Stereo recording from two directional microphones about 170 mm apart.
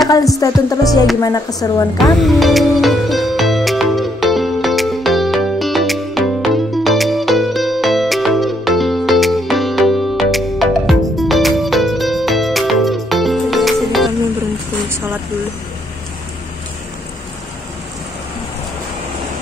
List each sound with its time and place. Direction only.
0.4 s music: 20° left (ahead or behind)
2.2 s music: centre (ahead or behind)